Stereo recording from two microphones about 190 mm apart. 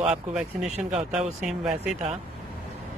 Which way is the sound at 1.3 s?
40° right (ahead or behind).